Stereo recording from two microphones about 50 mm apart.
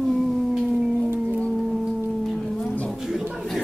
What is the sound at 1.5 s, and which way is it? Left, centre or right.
Singing bowl, centre.